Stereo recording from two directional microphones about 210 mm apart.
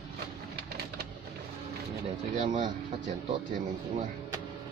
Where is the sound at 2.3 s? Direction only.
40° right (ahead or behind).